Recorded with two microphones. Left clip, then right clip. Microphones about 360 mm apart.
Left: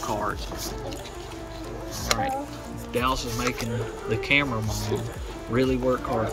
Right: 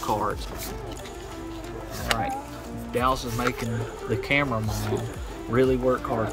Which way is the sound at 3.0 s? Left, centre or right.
Centre.